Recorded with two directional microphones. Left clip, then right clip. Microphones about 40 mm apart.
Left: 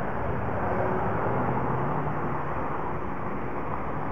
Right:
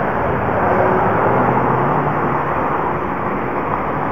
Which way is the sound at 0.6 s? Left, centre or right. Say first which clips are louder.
Right 13 dB; right.